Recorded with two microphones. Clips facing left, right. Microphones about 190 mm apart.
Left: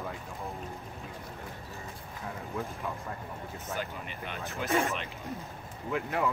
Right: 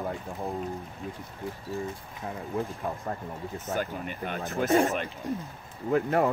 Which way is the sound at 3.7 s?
45° right (ahead or behind).